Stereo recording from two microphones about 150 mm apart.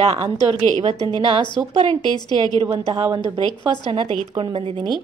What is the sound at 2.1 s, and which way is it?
Speech, 25° left (ahead or behind).